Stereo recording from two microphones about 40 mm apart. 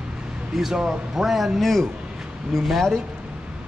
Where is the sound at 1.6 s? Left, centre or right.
Centre.